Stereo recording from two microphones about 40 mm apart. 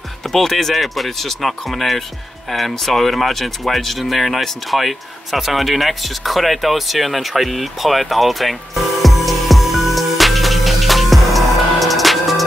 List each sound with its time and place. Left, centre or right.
0.3 s speech: centre
9.0 s music: centre